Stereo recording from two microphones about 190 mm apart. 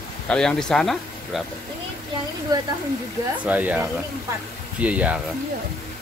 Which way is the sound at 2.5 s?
20° right (ahead or behind).